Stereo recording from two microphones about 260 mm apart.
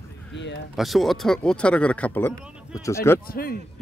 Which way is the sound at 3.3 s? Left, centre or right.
Left.